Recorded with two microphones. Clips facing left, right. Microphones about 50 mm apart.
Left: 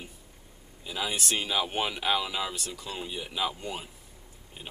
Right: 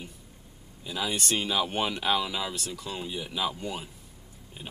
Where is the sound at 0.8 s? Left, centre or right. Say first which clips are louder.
Right 1 dB; centre.